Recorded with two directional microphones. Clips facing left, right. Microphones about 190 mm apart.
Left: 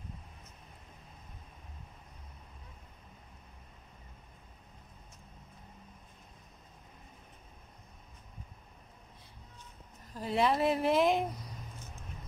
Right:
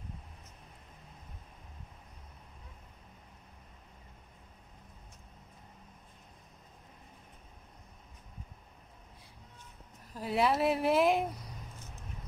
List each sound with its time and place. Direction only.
10.1 s speech: 5° right (ahead or behind)